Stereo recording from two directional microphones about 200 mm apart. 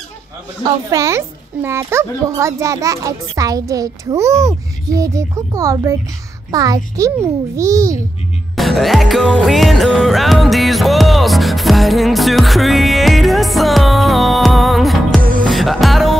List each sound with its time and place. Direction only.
0.7 s a child's voice: 15° right (ahead or behind)
8.5 s music: centre (ahead or behind)